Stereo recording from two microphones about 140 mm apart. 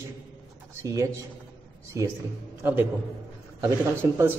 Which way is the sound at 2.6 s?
10° right (ahead or behind).